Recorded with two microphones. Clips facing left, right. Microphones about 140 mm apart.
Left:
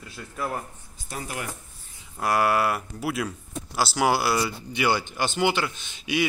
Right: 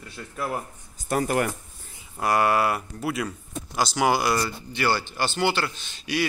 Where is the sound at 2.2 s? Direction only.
Centre (ahead or behind).